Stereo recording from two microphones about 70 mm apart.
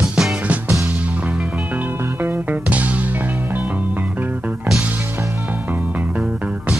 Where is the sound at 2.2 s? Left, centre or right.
Right.